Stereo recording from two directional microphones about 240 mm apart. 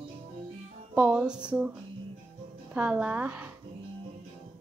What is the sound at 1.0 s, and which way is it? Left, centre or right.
Speech, centre.